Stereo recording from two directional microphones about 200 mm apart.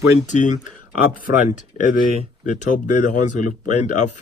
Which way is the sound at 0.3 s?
40° left (ahead or behind).